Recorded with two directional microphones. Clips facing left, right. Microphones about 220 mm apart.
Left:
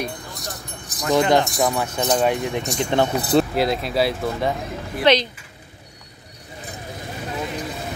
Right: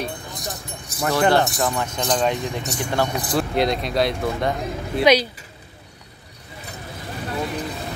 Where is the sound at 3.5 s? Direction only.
5° left (ahead or behind).